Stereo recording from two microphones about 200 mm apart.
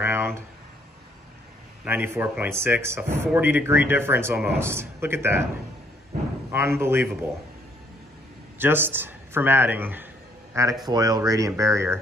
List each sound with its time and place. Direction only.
0.0 s a sound: 10° right (ahead or behind)
1.9 s speech: 10° right (ahead or behind)
6.5 s speech: 10° right (ahead or behind)
8.5 s a man's voice: 10° right (ahead or behind)